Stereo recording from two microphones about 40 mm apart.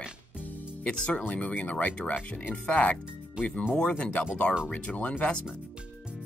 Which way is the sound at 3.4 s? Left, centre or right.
Right.